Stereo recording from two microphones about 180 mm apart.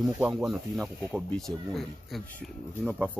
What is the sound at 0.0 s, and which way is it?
Speech, 5° right (ahead or behind).